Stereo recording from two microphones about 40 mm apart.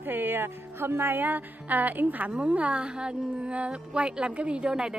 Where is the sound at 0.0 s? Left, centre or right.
Right.